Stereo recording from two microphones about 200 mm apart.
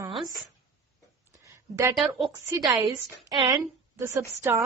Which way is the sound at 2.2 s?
20° right (ahead or behind).